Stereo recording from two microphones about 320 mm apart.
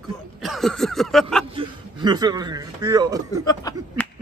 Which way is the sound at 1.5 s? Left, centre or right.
Centre.